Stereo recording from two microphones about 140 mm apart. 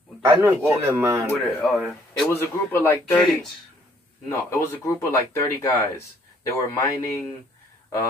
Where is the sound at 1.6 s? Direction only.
10° left (ahead or behind).